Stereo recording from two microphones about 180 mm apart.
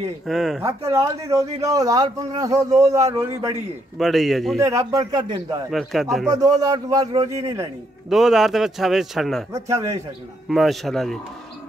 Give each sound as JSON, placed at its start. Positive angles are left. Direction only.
{"t": 0.3, "sound": "a man's voice", "side_deg": 0}
{"t": 0.7, "sound": "a man's voice", "side_deg": -15}
{"t": 4.0, "sound": "a man's voice", "side_deg": 0}
{"t": 4.6, "sound": "a man's voice", "side_deg": -15}
{"t": 5.7, "sound": "a man's voice", "side_deg": 0}
{"t": 6.3, "sound": "a man's voice", "side_deg": -20}
{"t": 8.1, "sound": "a man's voice", "side_deg": 0}
{"t": 9.5, "sound": "a man's voice", "side_deg": -20}
{"t": 10.5, "sound": "a man's voice", "side_deg": 0}